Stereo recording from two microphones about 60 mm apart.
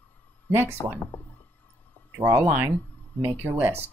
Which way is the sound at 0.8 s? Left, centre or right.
Left.